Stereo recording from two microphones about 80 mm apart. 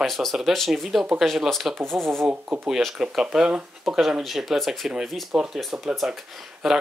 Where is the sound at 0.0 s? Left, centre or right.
Centre.